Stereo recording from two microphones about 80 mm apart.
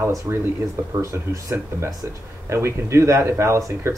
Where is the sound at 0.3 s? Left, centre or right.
Right.